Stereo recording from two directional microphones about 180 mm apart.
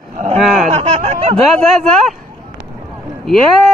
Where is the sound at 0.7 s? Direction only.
35° right (ahead or behind).